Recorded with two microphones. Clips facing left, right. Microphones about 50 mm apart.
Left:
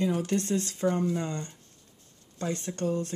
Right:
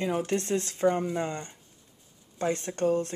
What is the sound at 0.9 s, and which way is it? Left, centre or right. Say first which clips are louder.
Speech: even; centre.